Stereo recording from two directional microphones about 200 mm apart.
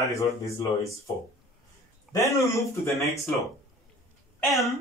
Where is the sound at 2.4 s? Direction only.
15° left (ahead or behind).